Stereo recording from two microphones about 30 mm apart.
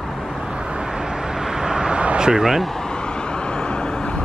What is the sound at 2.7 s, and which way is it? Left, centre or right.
Vehicle, left.